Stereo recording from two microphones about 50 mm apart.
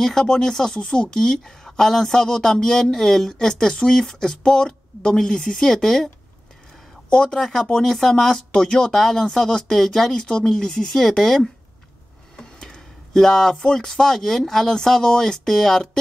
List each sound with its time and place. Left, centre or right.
0.0 s speech: centre
7.1 s speech: centre
7.3 s speech: centre